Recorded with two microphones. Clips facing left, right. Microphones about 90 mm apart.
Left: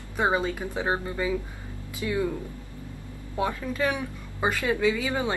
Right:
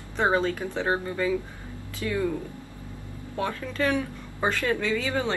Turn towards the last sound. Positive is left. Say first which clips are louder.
# left 1 dB
turn(degrees=15)  # may be behind; listen again after turning